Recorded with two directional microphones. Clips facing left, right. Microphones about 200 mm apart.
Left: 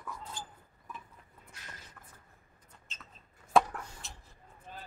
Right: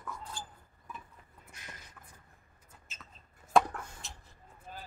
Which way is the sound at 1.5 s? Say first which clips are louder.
Even; 15° right (ahead or behind).